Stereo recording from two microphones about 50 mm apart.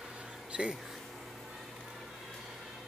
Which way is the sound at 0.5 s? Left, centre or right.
Centre.